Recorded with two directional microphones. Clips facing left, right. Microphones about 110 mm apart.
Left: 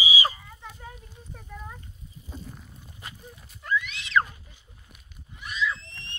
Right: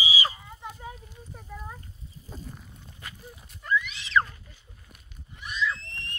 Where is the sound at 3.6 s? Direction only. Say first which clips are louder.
Right 1 dB; centre (ahead or behind).